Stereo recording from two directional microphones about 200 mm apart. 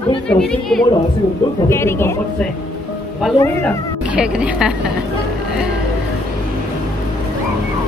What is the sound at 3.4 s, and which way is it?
Speech, 10° left (ahead or behind).